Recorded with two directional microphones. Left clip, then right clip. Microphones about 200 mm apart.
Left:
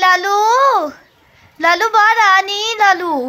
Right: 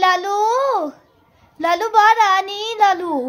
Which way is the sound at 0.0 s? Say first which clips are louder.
Left 4 dB; 10° left (ahead or behind).